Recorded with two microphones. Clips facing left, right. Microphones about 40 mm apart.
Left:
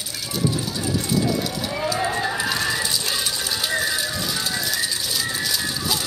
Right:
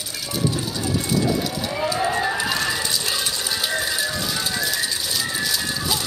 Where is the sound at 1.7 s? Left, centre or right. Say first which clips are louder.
Right 2 dB; centre.